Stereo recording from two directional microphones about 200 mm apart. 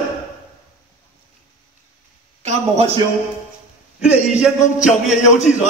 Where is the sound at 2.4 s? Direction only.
30° right (ahead or behind).